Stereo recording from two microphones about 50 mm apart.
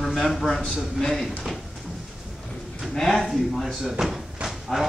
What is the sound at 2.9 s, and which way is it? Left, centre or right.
Speech, centre.